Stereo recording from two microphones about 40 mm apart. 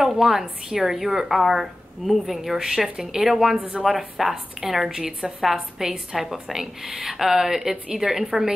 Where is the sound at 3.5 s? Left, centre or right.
Right.